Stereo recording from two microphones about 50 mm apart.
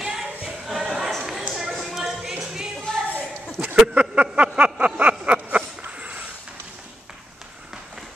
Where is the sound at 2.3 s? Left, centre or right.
Centre.